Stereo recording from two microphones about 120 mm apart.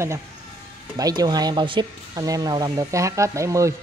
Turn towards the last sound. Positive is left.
turn(degrees=-25)  # may be behind; listen again after turning